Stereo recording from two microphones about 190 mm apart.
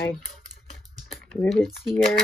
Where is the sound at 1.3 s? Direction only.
Centre (ahead or behind).